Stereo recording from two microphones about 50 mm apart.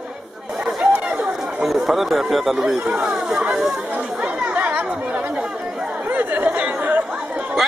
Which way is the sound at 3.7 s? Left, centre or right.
Right.